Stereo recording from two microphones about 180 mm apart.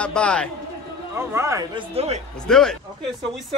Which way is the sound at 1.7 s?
35° right (ahead or behind).